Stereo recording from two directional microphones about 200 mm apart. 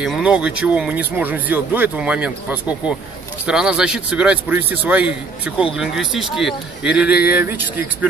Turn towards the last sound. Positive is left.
turn(degrees=-10)  # may be behind; listen again after turning